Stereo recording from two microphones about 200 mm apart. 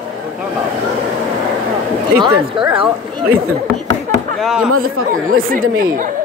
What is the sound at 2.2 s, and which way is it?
Speech, 20° right (ahead or behind).